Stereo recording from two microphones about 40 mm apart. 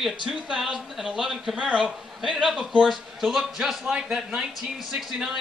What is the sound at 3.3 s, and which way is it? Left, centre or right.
Speech, centre.